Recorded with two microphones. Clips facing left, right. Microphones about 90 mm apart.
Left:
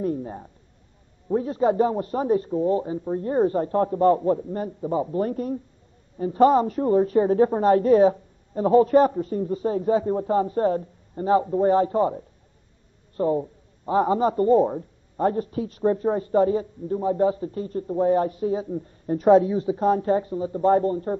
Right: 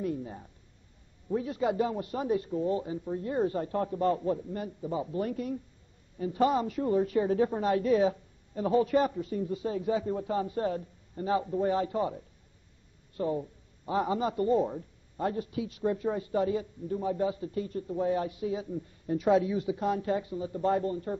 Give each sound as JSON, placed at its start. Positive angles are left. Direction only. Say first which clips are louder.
{"t": 0.0, "sound": "a man's voice", "louder": "left 7 dB", "side_deg": 40}